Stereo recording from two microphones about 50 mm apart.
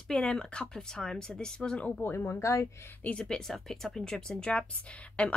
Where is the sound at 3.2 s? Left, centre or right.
Centre.